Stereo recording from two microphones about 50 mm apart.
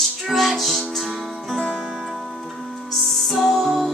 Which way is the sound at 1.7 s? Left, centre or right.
Right.